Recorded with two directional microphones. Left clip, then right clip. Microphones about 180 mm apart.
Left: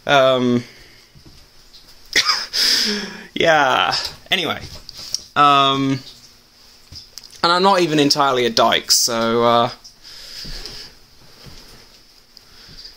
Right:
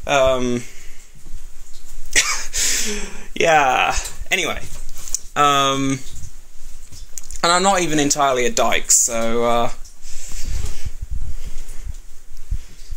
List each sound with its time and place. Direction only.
0.0 s speech: 20° left (ahead or behind)
2.1 s gasp: 15° left (ahead or behind)
5.1 s speech: 10° left (ahead or behind)
7.2 s speech: 15° left (ahead or behind)
10.2 s snort: 15° left (ahead or behind)